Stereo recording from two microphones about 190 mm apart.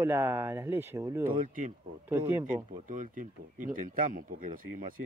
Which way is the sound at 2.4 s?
45° right (ahead or behind).